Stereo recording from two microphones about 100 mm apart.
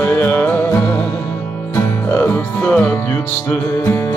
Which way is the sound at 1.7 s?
25° left (ahead or behind).